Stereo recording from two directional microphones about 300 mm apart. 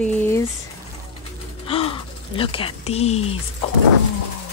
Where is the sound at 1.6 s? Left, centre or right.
Centre.